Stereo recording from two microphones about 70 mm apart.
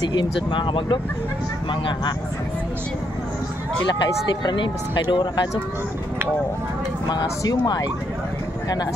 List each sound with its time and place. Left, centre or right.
3.8 s speech: left
7.1 s speech: left